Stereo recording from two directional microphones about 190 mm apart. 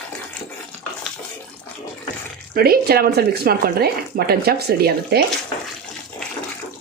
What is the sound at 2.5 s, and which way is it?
Speech, 55° right (ahead or behind).